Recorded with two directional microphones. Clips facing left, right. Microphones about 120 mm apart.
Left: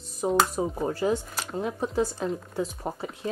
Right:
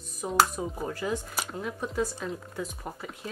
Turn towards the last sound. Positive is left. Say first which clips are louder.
# left 6 dB
turn(degrees=30)  # may be behind; listen again after turning